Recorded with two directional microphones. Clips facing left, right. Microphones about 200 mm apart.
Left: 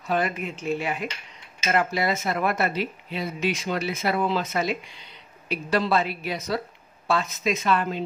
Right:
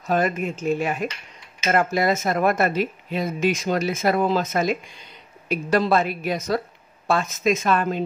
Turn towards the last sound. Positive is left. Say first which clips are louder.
# right 3 dB
turn(degrees=-45)  # may be behind; listen again after turning